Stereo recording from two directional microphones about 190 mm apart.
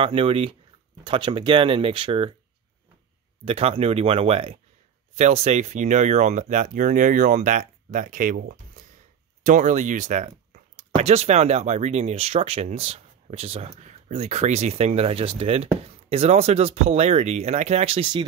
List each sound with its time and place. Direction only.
0.0 s speech: 30° right (ahead or behind)
3.4 s speech: 30° right (ahead or behind)